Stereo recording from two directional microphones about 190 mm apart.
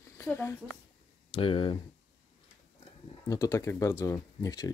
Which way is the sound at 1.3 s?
30° left (ahead or behind).